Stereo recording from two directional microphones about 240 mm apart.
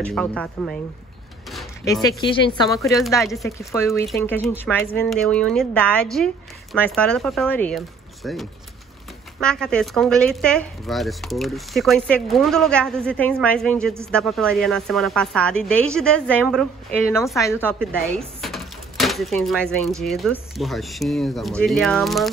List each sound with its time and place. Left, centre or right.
0.0 s speech: centre
1.9 s speech: centre